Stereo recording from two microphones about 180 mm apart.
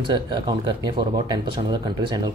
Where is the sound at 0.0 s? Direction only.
25° right (ahead or behind).